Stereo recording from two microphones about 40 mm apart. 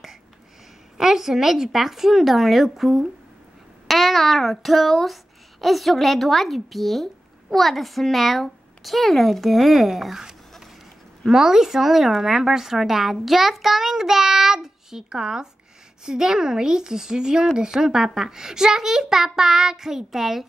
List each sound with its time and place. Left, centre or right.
0.9 s a woman's voice: centre